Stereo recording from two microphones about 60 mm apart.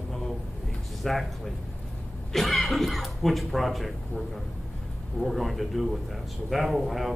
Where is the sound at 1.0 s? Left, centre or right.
Centre.